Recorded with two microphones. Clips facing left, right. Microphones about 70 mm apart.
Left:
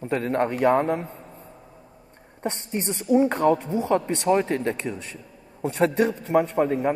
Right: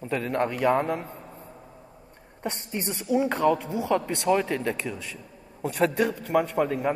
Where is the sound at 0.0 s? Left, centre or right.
Left.